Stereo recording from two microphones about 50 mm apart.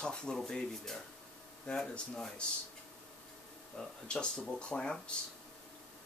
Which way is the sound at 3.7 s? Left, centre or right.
Centre.